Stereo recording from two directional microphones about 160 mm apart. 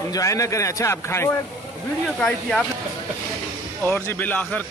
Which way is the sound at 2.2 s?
Centre (ahead or behind).